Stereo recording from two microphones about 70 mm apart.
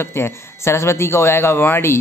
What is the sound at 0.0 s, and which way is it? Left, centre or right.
Speech, left.